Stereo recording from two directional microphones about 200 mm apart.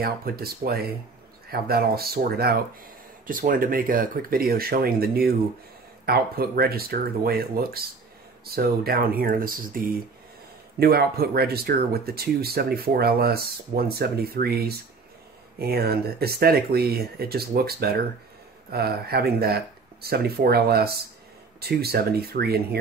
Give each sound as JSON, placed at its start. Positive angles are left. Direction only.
{"t": 0.0, "sound": "speech", "side_deg": -50}